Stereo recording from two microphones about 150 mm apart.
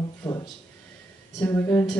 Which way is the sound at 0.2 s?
20° left (ahead or behind).